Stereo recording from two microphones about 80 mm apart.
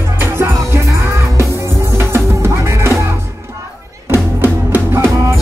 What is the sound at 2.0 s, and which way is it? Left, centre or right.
Music, right.